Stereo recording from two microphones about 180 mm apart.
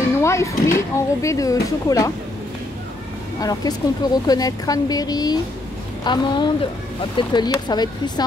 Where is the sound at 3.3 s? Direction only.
20° left (ahead or behind).